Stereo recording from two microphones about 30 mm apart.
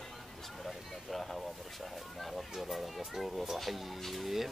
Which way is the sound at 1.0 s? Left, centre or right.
Centre.